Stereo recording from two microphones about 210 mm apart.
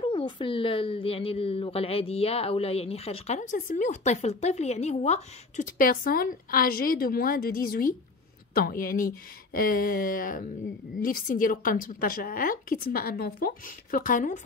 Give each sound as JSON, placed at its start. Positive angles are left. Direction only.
{"t": 0.0, "sound": "a woman's voice", "side_deg": 25}